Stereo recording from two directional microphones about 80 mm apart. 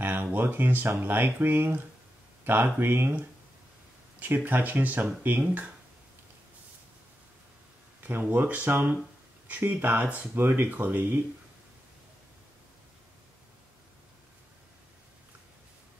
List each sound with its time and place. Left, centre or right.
0.0 s speech: right
8.0 s speech: right